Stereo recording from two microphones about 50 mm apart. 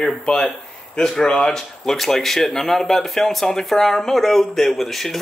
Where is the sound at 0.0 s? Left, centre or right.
Centre.